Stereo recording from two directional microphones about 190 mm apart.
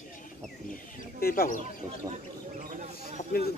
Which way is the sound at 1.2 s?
50° left (ahead or behind).